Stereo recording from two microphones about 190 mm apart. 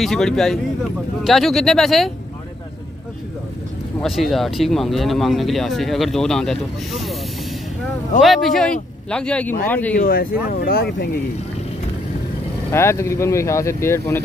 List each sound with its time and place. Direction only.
0.0 s speech: 5° left (ahead or behind)
4.0 s speech: centre (ahead or behind)
8.2 s speech: centre (ahead or behind)
9.9 s speech: 50° left (ahead or behind)
12.7 s speech: 15° left (ahead or behind)